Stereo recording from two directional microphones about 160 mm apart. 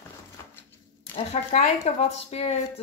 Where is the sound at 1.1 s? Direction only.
40° left (ahead or behind).